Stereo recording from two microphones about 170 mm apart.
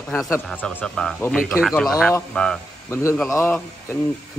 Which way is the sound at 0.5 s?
5° left (ahead or behind).